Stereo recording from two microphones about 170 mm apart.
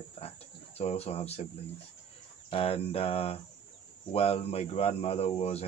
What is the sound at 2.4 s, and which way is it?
Speech, 35° left (ahead or behind).